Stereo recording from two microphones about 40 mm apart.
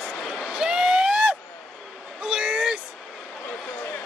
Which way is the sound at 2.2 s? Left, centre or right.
Right.